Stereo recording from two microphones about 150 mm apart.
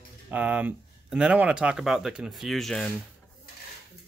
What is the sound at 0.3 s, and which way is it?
Speech, 10° right (ahead or behind).